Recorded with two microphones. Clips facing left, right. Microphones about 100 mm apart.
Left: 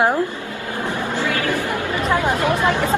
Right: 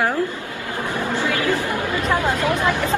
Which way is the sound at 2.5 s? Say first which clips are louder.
Left 2 dB; 25° left (ahead or behind).